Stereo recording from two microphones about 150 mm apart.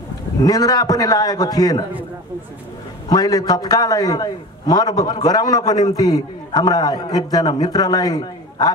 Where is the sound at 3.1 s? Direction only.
25° left (ahead or behind).